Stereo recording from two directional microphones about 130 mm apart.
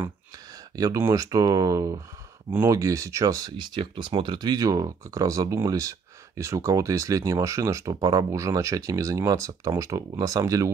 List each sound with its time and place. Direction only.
0.7 s speech: 25° right (ahead or behind)